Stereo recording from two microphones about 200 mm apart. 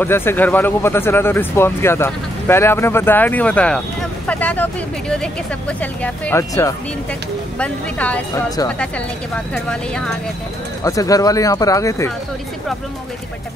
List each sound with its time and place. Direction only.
0.0 s speech: 10° left (ahead or behind)
10.8 s speech: 15° left (ahead or behind)